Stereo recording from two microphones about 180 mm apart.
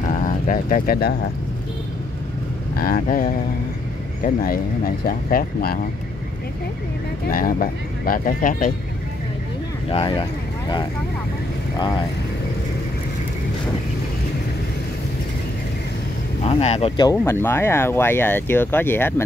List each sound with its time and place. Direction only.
0.0 s bird: 50° left (ahead or behind)
2.8 s speech: 50° left (ahead or behind)
7.2 s speech: 50° left (ahead or behind)
9.8 s speech: 30° left (ahead or behind)
16.4 s speech: 35° left (ahead or behind); by 19.2 s 10° left (ahead or behind)